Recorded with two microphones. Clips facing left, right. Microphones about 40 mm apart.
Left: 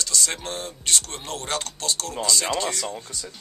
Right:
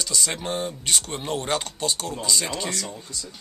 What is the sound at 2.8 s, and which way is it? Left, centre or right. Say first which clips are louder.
Speech: left 3 dB; left.